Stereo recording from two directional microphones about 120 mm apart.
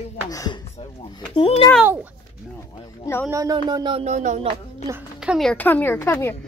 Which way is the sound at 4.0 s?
80° right.